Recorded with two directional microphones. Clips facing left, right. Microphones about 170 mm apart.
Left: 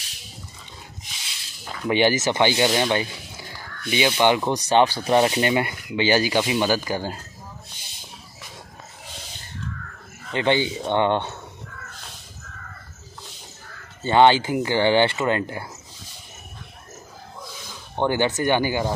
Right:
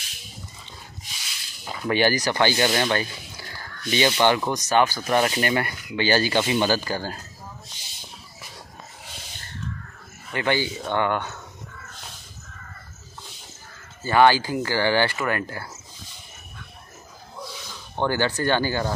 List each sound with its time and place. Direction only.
1.6 s speech: 10° right (ahead or behind)
1.9 s speech: 20° left (ahead or behind)
4.5 s speech: 30° left (ahead or behind)
10.3 s speech: 20° left (ahead or behind)
14.0 s speech: 20° left (ahead or behind)
17.9 s speech: 20° left (ahead or behind)